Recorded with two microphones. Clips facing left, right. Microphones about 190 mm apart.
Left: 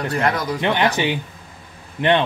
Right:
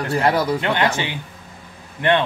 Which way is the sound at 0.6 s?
20° left (ahead or behind).